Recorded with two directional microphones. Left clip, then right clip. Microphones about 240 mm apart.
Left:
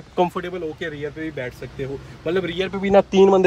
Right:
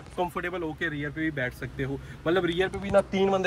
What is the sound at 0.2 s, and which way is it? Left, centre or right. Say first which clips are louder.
Speech: left 10 dB; left.